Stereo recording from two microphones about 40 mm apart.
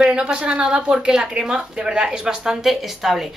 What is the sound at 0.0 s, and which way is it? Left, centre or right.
Speech, centre.